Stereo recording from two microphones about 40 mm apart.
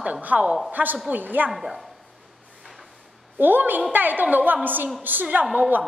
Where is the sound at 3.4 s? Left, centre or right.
Right.